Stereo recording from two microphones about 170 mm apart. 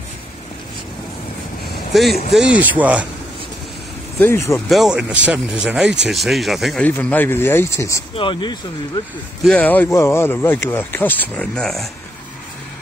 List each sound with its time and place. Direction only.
2.3 s speech: 5° right (ahead or behind)
4.2 s speech: 15° left (ahead or behind)
4.6 s speech: centre (ahead or behind); by 8.0 s 15° left (ahead or behind)
8.2 s speech: 30° left (ahead or behind)
9.4 s speech: 5° left (ahead or behind)